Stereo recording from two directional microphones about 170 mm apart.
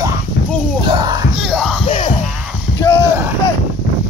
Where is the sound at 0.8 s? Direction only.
25° right (ahead or behind).